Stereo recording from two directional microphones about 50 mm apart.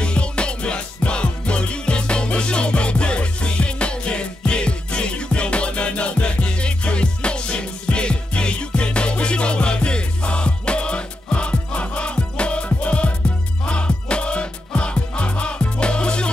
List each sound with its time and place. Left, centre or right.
0.0 s music: left